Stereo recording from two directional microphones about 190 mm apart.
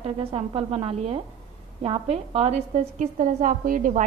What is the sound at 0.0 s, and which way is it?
A woman's voice, 30° right (ahead or behind).